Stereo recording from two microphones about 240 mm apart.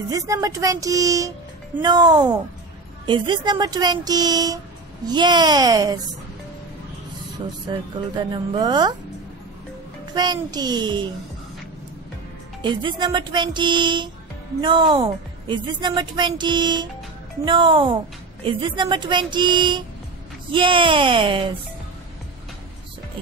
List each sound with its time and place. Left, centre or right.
0.1 s a woman's voice: centre
8.2 s a woman's voice: centre
10.1 s a woman's voice: centre
12.6 s a woman's voice: centre